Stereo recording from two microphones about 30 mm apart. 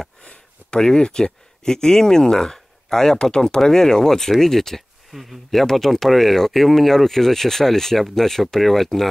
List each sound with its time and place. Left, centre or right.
0.2 s a sound: left
0.7 s speech: left
5.1 s speech: centre
5.5 s speech: centre